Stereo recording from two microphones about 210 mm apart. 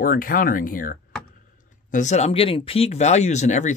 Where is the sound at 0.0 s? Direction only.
40° left (ahead or behind).